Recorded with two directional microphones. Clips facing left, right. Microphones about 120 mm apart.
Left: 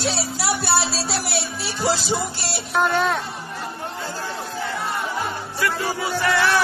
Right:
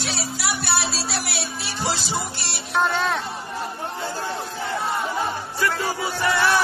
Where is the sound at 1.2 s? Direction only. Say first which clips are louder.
Left 3 dB; centre (ahead or behind).